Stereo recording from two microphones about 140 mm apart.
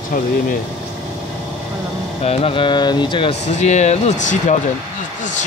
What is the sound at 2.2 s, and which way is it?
Speech, 40° left (ahead or behind).